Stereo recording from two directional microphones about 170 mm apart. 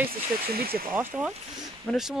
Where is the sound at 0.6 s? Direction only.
60° right (ahead or behind).